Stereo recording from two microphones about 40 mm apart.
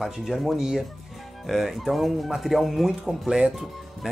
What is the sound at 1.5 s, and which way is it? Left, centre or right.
Speech, centre.